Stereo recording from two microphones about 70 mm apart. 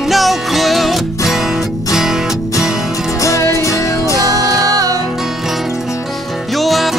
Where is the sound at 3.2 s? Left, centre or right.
Left.